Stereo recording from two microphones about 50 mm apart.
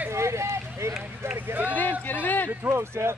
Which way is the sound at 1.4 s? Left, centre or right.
Right.